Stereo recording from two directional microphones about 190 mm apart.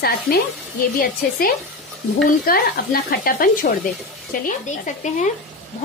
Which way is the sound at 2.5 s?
50° left (ahead or behind).